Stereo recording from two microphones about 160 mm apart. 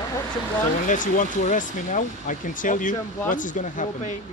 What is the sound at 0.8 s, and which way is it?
Speech, 55° left (ahead or behind).